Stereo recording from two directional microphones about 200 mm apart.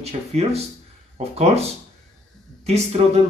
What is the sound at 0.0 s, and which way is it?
Speech, 30° right (ahead or behind).